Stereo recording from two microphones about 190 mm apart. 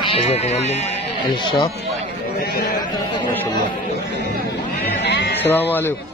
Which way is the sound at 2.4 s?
55° left (ahead or behind).